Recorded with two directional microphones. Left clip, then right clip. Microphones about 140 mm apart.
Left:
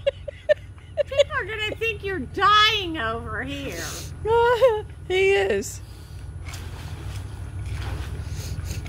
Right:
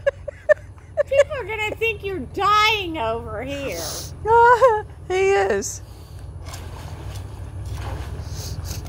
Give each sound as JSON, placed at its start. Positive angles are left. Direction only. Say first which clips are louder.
{"t": 0.3, "sound": "a sound", "louder": "right 6 dB", "side_deg": 30}
{"t": 1.3, "sound": "speech", "louder": "right 1 dB", "side_deg": 15}
{"t": 3.7, "sound": "speech", "louder": "right 3 dB", "side_deg": 50}
{"t": 4.2, "sound": "speech", "louder": "right 5 dB", "side_deg": 35}
{"t": 8.3, "sound": "vehicle", "louder": "right 3 dB", "side_deg": 50}